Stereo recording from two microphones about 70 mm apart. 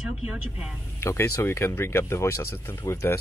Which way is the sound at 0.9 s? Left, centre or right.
Left.